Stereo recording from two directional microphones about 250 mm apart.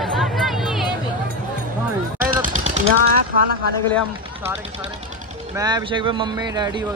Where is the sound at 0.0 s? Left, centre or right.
Centre.